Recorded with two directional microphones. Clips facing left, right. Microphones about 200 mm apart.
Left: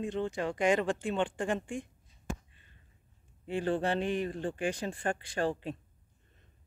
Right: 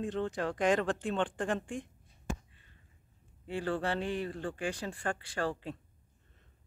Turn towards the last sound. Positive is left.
turn(degrees=20)  # may be behind; listen again after turning